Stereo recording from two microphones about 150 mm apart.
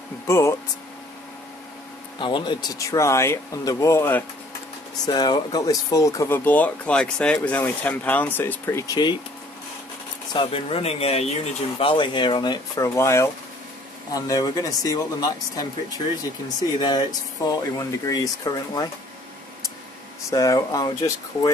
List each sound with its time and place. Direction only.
0.3 s speech: 20° left (ahead or behind)
2.1 s speech: 30° left (ahead or behind)
5.0 s speech: 30° left (ahead or behind)
10.3 s speech: 35° left (ahead or behind)
17.5 s speech: 25° left (ahead or behind)
20.2 s speech: 25° left (ahead or behind)